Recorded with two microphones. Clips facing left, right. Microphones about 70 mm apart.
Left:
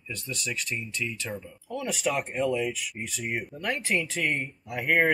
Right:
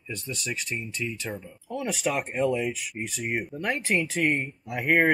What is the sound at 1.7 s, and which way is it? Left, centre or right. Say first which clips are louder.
Speech: right 1 dB; centre.